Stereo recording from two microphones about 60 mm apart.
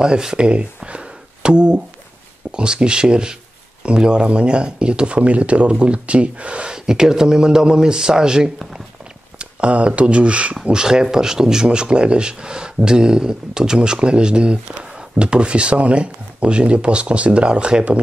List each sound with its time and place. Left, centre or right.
0.0 s speech: centre